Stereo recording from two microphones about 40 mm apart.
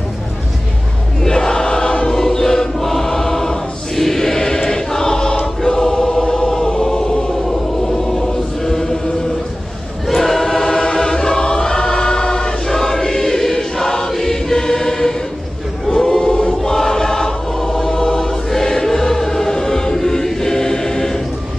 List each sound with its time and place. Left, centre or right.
1.2 s choir: centre
10.0 s choir: centre